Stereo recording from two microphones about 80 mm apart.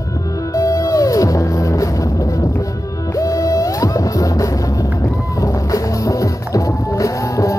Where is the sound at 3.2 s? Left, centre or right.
Left.